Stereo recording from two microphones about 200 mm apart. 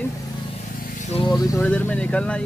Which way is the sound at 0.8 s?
35° left (ahead or behind).